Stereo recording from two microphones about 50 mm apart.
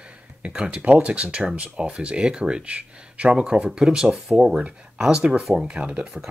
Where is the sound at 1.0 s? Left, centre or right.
Right; by 4.6 s centre.